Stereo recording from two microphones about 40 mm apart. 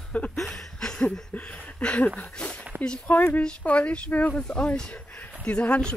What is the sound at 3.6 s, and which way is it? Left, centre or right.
Speech, left.